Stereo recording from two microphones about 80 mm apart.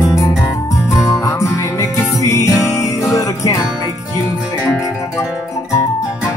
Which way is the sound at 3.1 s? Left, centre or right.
Left.